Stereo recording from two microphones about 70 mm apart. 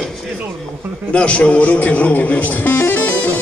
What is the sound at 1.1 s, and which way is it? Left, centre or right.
Speech, centre.